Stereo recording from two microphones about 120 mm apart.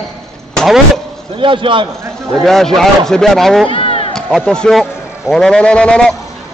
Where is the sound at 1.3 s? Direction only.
45° right (ahead or behind).